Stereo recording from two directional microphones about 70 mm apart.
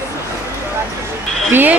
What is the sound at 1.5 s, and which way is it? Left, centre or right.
Speech, right.